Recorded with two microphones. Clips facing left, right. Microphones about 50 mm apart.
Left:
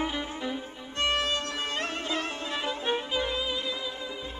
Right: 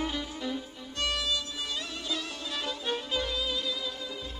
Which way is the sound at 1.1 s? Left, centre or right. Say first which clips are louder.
Left 5 dB; left.